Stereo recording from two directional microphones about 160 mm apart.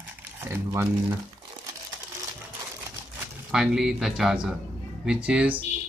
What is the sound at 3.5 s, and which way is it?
Speech, 5° right (ahead or behind).